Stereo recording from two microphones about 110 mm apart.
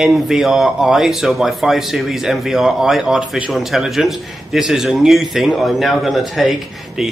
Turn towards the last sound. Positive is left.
turn(degrees=-5)  # may be behind; listen again after turning